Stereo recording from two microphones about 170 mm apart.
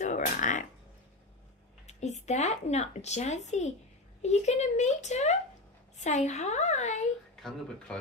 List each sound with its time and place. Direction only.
0.0 s speech: 45° left (ahead or behind)
1.9 s speech: 40° left (ahead or behind)